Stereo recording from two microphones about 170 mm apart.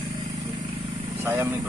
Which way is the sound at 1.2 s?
15° right (ahead or behind).